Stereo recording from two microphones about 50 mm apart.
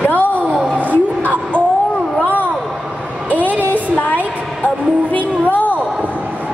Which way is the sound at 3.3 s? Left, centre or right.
Left.